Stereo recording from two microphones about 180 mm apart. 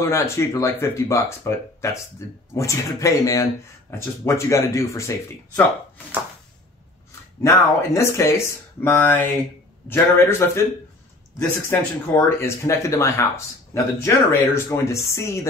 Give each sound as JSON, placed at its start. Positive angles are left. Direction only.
{"t": 0.0, "sound": "speech", "side_deg": 15}
{"t": 7.4, "sound": "speech", "side_deg": 15}